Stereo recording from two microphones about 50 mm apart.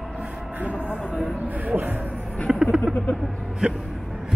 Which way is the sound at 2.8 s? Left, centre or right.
Left.